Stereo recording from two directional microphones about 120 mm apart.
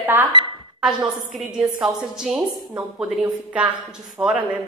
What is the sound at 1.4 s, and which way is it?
A woman's voice, 5° right (ahead or behind).